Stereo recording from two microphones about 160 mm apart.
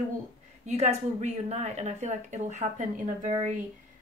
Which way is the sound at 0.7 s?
45° right (ahead or behind).